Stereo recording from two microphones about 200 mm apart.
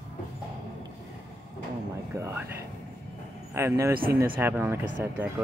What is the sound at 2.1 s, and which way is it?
Speech, 15° right (ahead or behind).